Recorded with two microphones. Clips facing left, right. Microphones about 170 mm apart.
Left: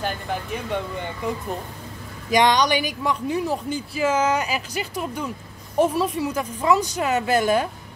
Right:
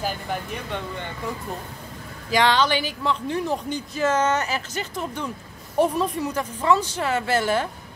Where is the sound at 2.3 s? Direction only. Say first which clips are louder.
Left 2 dB; 15° left (ahead or behind).